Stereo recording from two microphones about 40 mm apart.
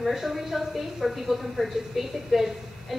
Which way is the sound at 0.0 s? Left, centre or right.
Centre.